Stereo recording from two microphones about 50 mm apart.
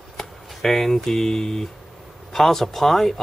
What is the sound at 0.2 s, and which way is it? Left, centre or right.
Speech, centre.